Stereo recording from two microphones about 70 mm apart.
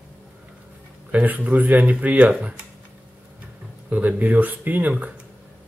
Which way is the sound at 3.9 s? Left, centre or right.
Right.